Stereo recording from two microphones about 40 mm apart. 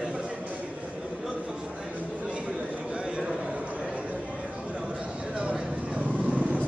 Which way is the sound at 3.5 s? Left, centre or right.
Right.